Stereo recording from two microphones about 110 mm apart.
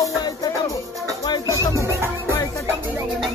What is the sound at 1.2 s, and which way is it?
Music, 40° left (ahead or behind).